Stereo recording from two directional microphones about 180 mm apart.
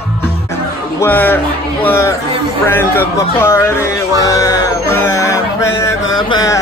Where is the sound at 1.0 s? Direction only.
10° left (ahead or behind).